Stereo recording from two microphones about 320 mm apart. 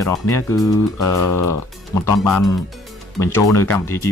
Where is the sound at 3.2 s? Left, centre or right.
Centre.